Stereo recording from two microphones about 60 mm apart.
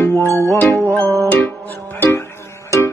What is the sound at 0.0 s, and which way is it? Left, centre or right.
Music, left.